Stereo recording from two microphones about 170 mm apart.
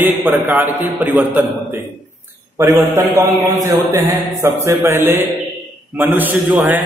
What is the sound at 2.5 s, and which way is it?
Mantra, 15° right (ahead or behind).